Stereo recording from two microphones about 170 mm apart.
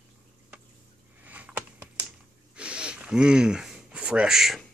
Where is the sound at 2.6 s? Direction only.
5° right (ahead or behind).